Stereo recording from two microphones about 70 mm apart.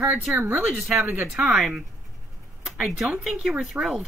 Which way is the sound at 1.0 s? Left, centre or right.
Right.